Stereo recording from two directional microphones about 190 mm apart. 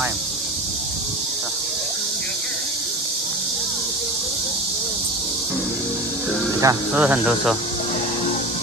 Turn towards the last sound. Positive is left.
turn(degrees=-5)  # may be behind; listen again after turning